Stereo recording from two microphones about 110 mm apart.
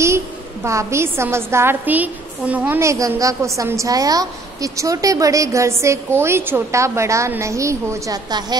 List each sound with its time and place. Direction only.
0.7 s a woman's voice: 25° right (ahead or behind)
2.8 s a woman's voice: 25° right (ahead or behind)